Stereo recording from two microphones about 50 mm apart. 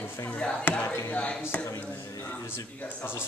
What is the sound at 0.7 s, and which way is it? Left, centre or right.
Chop, left.